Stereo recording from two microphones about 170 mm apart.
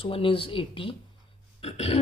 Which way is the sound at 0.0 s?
30° left (ahead or behind).